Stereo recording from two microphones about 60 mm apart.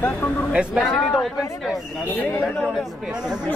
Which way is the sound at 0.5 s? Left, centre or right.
Centre.